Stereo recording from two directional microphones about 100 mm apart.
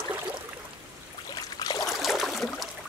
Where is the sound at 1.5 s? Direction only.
40° left (ahead or behind).